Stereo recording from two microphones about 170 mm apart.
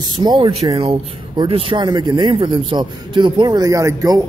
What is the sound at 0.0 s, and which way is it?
Speech, 25° right (ahead or behind).